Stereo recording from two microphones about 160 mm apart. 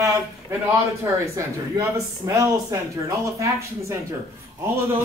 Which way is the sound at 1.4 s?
20° right (ahead or behind).